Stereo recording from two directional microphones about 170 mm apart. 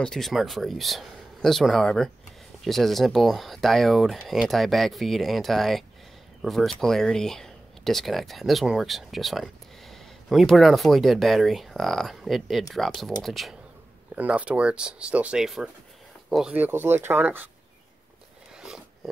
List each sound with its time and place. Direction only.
0.0 s speech: centre (ahead or behind)